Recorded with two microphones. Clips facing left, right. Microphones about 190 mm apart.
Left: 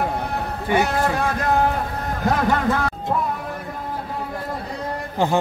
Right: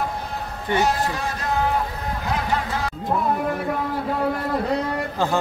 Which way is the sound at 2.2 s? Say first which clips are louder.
Left 7 dB; 50° left (ahead or behind).